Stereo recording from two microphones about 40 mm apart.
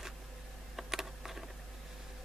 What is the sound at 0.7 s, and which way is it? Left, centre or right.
Typing, centre.